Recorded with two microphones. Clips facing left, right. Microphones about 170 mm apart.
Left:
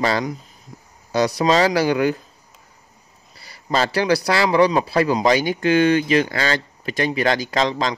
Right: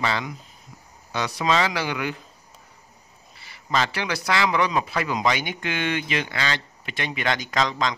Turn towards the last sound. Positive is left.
turn(degrees=35)  # may be behind; listen again after turning